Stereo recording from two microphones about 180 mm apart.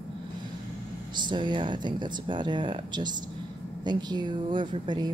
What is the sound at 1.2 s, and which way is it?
Speech, 25° right (ahead or behind).